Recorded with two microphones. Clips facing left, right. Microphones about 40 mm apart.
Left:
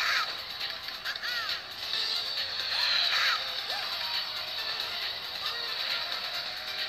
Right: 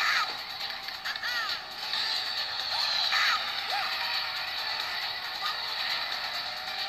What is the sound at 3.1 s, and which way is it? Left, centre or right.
Music, left.